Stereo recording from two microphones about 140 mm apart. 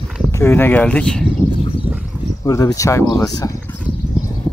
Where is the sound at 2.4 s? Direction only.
25° left (ahead or behind).